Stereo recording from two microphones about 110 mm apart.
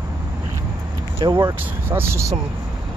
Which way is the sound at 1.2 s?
35° right (ahead or behind).